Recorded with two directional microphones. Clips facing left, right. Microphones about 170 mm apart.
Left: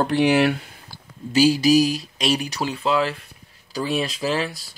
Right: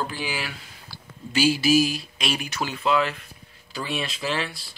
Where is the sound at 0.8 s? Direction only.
40° left (ahead or behind).